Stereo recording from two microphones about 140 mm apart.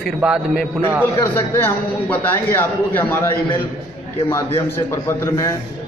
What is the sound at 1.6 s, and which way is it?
A man's voice, 15° left (ahead or behind).